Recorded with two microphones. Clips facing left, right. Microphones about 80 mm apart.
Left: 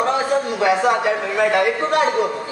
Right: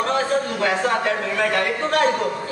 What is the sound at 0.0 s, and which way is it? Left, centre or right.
A man's voice, centre.